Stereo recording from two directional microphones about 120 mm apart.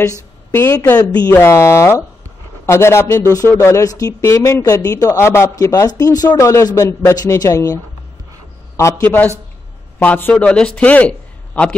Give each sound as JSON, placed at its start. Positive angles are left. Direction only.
{"t": 0.6, "sound": "a man's voice", "side_deg": 20}